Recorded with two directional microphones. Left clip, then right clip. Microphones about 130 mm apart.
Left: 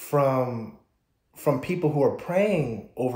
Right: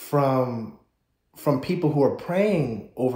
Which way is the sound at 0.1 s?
30° left (ahead or behind).